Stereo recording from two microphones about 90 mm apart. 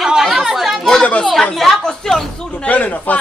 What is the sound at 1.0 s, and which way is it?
Chatter, 10° left (ahead or behind).